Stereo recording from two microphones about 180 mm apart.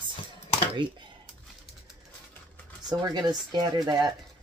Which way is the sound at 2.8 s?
25° right (ahead or behind).